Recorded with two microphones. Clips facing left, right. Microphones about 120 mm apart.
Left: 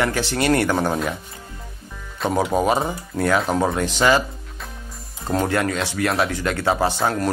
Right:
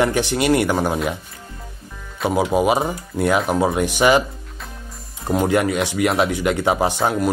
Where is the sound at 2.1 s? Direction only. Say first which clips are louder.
Right 2 dB; 5° right (ahead or behind).